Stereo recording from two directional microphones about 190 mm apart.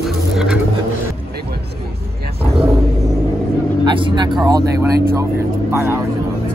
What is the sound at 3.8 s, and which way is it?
Speech, 25° right (ahead or behind).